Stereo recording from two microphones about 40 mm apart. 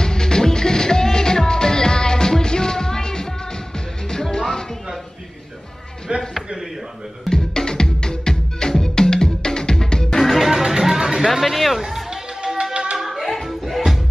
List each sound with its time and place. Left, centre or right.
0.0 s music: centre
6.1 s a sound: right
7.2 s music: centre
10.2 s music: centre
10.5 s music: centre
11.3 s a sound: centre
11.8 s music: centre
13.2 s music: centre